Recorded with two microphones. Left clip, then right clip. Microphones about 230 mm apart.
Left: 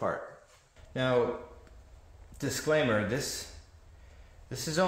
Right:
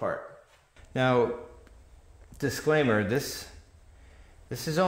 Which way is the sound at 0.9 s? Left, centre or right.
Right.